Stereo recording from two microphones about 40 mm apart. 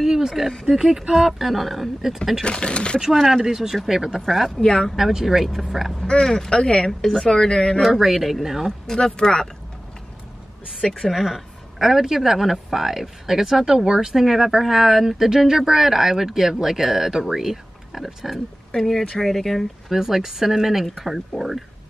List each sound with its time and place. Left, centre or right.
0.0 s speech: centre
2.4 s speech: left
3.0 s speech: centre
4.6 s speech: left
4.9 s speech: centre
5.9 s speech: left
6.9 s speech: centre; by 7.8 s left
7.8 s speech: centre
8.8 s speech: centre
10.9 s speech: centre
11.1 s speech: centre
18.7 s speech: centre
19.9 s speech: centre